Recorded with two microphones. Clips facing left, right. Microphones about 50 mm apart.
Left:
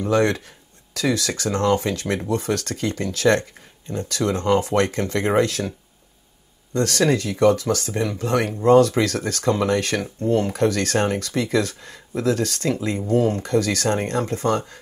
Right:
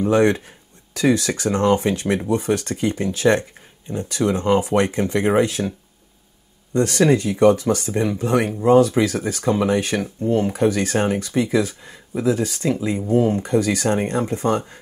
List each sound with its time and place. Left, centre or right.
0.0 s speech: right